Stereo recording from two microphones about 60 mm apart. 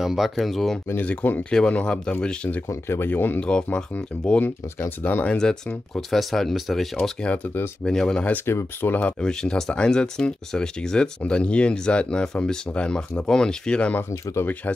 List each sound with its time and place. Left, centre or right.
0.0 s speech: centre
1.0 s speech: left
1.5 s speech: centre
3.0 s speech: left
3.3 s speech: centre
4.7 s speech: left
5.2 s speech: centre
5.9 s speech: centre
7.0 s speech: centre
8.5 s speech: left
9.2 s speech: centre